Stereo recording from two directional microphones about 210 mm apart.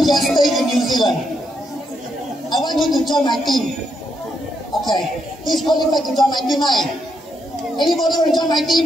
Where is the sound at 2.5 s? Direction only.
20° left (ahead or behind).